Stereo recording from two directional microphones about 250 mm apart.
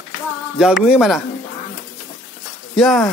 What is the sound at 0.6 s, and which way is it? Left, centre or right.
Speech, centre.